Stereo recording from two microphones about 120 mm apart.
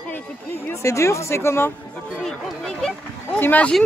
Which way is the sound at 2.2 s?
5° left (ahead or behind).